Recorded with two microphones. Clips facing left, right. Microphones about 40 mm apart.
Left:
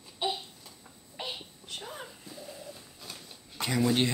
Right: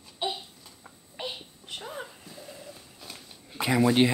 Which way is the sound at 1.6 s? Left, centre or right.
Right.